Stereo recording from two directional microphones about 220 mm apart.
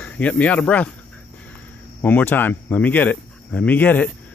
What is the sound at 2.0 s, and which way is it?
Speech, 10° left (ahead or behind).